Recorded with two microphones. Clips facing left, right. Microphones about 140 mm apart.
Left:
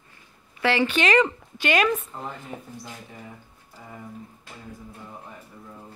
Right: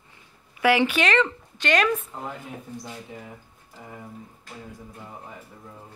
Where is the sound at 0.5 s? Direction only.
10° right (ahead or behind).